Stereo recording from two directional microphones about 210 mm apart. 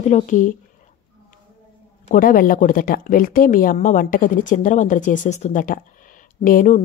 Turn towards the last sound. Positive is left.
turn(degrees=35)  # may be behind; listen again after turning